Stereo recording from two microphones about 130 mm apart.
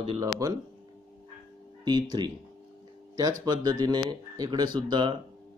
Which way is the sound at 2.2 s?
35° right (ahead or behind).